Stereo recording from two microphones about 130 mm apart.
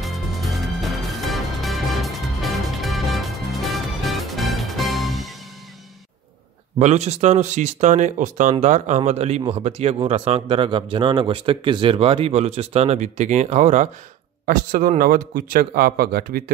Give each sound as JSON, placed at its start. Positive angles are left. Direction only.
{"t": 0.0, "sound": "music", "side_deg": 0}
{"t": 6.8, "sound": "speech", "side_deg": -60}
{"t": 14.4, "sound": "a man's voice", "side_deg": -90}